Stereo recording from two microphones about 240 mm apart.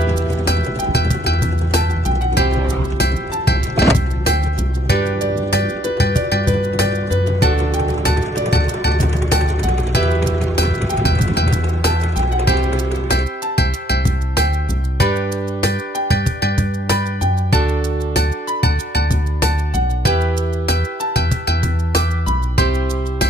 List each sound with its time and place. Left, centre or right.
0.5 s music: left
3.0 s music: left
4.8 s music: left
8.5 s music: left
13.1 s music: left
15.6 s music: left
18.1 s music: left
20.6 s music: left